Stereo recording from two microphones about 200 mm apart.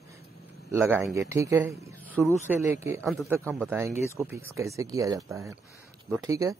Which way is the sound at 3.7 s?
10° right (ahead or behind).